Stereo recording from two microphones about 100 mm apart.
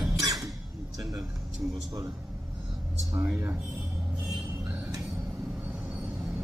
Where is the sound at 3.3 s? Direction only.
25° right (ahead or behind).